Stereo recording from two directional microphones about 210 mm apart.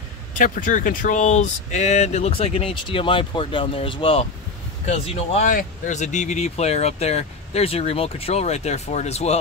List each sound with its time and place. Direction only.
0.3 s speech: 40° left (ahead or behind)